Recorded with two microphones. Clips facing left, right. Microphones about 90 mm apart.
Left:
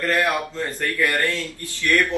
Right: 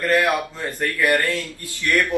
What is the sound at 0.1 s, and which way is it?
Speech, 15° right (ahead or behind).